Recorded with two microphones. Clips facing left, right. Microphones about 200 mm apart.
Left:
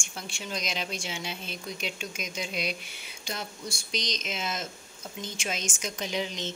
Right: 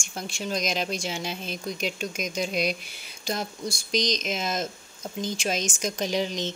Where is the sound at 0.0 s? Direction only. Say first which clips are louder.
Right 6 dB; 40° right (ahead or behind).